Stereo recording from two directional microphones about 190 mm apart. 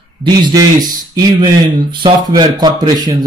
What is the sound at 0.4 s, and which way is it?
Speech, 20° right (ahead or behind).